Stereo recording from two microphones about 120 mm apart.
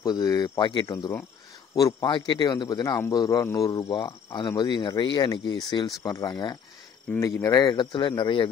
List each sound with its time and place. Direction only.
0.0 s speech: 30° left (ahead or behind)
0.8 s speech: 25° left (ahead or behind)
4.5 s speech: 40° left (ahead or behind)
7.1 s speech: 20° left (ahead or behind); by 8.5 s 40° left (ahead or behind)